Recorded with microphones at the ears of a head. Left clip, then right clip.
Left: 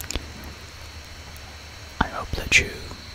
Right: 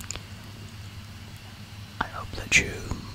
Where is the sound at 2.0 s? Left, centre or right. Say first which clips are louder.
Left 6 dB; left.